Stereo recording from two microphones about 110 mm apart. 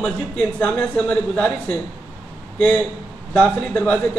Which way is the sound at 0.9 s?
10° left (ahead or behind).